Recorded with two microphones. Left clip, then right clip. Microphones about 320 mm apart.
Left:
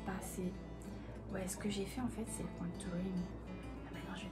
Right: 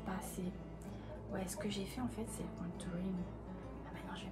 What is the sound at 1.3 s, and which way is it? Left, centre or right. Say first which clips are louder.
Speech: even; centre.